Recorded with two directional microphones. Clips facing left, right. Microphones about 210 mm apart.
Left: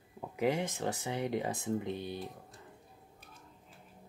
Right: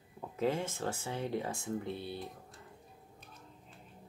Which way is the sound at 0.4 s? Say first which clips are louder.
Left 2 dB; 15° left (ahead or behind).